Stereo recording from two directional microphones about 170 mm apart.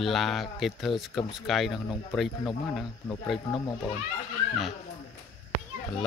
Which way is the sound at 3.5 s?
35° left (ahead or behind).